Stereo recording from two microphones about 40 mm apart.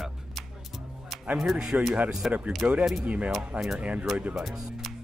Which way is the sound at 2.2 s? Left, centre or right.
Centre.